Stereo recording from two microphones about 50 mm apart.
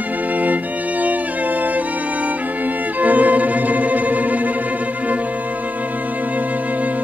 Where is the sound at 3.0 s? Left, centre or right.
Right.